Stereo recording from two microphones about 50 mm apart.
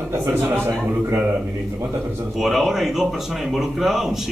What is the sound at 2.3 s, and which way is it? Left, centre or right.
A man's voice, centre.